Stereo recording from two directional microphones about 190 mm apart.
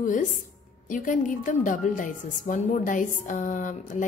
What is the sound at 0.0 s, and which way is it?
A woman's voice, 45° left (ahead or behind).